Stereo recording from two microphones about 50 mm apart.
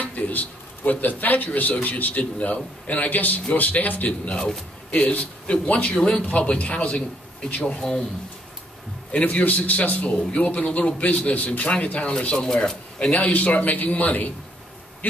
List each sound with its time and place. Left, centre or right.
0.0 s a man's voice: left; by 8.0 s centre
9.1 s a man's voice: left
12.4 s speech: centre
13.1 s a man's voice: left